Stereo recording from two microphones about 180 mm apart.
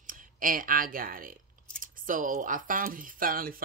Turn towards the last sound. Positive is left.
turn(degrees=-55)  # may be behind; listen again after turning